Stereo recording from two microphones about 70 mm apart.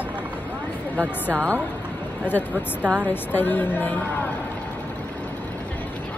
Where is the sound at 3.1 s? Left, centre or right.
Left.